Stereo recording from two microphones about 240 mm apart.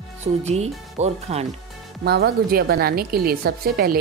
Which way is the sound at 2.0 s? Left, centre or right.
Right.